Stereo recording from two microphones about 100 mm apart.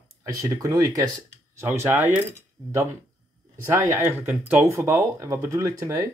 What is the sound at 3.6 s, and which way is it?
Speech, 25° right (ahead or behind).